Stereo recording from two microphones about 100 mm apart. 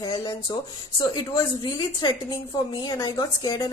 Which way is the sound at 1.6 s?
45° left (ahead or behind).